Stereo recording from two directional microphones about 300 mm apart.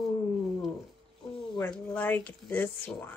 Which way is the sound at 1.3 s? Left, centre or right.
Centre.